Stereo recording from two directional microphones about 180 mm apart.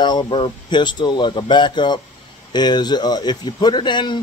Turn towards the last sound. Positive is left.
turn(degrees=25)  # may be behind; listen again after turning